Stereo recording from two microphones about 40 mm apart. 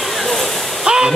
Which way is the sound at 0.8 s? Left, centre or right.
Centre.